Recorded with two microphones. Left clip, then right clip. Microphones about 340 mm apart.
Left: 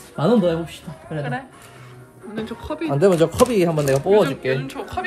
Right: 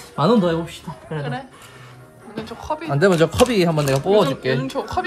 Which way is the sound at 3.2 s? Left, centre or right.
Right.